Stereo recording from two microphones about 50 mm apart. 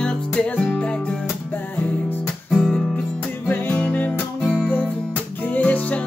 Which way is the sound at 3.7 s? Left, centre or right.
Left.